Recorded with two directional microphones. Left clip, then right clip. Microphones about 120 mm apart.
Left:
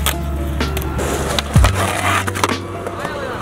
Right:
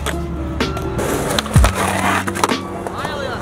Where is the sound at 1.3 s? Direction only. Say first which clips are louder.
Even; 15° right (ahead or behind).